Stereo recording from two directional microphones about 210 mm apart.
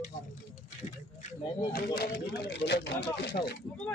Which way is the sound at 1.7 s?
45° left (ahead or behind).